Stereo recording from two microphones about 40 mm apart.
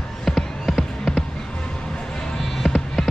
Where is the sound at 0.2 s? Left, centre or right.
Centre.